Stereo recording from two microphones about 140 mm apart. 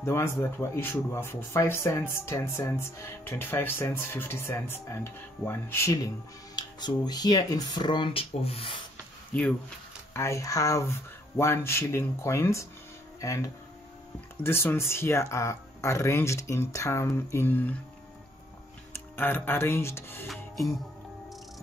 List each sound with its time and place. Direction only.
0.0 s speech: 20° left (ahead or behind)
6.5 s speech: 30° left (ahead or behind); by 8.7 s 45° left (ahead or behind)
9.3 s speech: 10° left (ahead or behind)
10.1 s speech: 20° left (ahead or behind)
19.1 s speech: 15° left (ahead or behind)